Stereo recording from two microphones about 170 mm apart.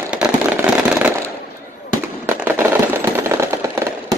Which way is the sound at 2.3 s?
15° right (ahead or behind).